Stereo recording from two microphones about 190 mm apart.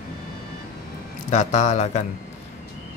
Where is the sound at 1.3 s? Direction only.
40° left (ahead or behind).